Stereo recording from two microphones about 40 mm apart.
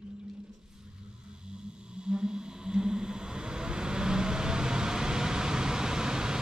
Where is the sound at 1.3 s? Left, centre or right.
Right.